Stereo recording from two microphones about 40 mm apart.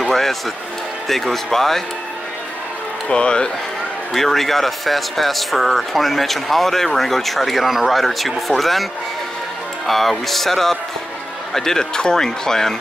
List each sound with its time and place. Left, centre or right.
0.0 s speech: centre
3.1 s speech: left
4.1 s speech: centre
9.8 s speech: centre